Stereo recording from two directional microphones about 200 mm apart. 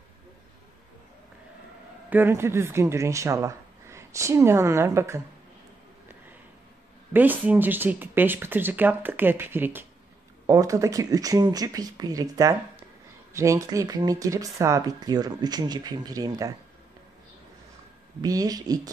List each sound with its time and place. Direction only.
2.0 s speech: 10° right (ahead or behind)
7.1 s speech: 10° right (ahead or behind)
18.2 s speech: 20° right (ahead or behind)